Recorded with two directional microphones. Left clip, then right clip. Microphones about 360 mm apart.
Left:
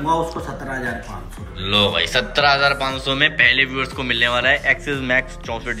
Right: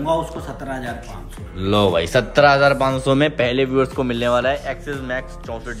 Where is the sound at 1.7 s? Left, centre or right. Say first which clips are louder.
Right 1 dB; centre.